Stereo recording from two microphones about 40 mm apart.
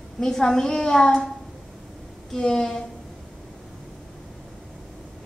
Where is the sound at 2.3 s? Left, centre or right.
Centre.